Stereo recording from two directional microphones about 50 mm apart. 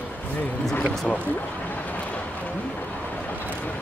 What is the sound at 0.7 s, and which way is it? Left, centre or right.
Speech, left.